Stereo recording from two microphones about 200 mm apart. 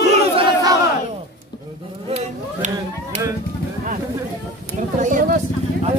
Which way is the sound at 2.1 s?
35° right (ahead or behind).